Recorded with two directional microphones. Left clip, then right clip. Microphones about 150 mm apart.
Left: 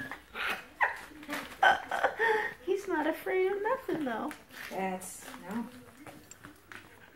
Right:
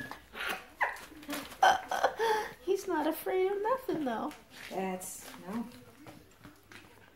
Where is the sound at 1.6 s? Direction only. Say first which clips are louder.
Even; 20° right (ahead or behind).